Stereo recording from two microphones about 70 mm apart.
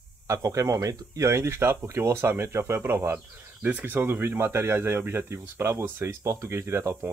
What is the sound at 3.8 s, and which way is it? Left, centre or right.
Speech, right.